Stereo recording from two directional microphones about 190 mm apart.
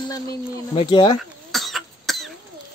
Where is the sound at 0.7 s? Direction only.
25° left (ahead or behind).